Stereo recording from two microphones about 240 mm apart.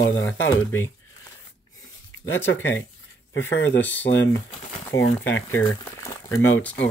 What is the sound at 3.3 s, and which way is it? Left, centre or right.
Speech, left.